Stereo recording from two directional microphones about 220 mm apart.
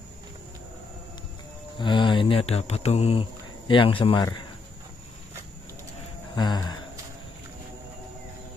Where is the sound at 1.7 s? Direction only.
20° left (ahead or behind).